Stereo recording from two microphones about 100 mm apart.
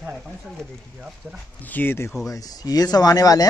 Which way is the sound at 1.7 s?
20° left (ahead or behind).